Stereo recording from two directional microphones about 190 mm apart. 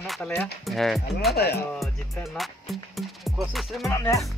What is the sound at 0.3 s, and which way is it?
Speech, 5° left (ahead or behind).